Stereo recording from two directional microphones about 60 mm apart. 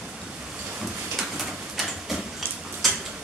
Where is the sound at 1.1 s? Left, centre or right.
Centre.